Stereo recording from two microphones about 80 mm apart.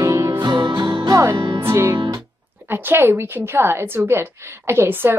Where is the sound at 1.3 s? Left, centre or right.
Right.